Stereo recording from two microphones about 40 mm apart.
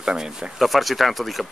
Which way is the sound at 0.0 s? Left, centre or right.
Centre.